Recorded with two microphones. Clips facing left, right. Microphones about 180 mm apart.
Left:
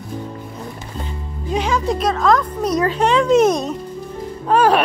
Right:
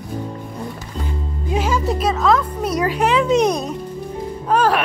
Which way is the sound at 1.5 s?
5° right (ahead or behind).